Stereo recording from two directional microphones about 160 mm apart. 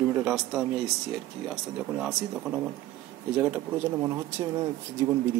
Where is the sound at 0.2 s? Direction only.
5° right (ahead or behind).